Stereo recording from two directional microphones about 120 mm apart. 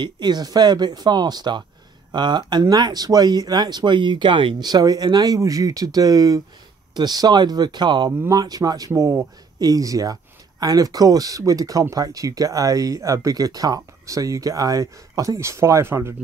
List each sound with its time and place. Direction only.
0.0 s speech: 35° right (ahead or behind); by 16.2 s 20° right (ahead or behind)